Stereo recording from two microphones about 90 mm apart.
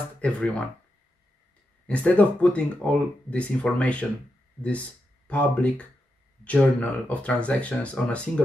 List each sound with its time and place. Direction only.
0.2 s speech: 15° left (ahead or behind)
1.9 s speech: 15° left (ahead or behind)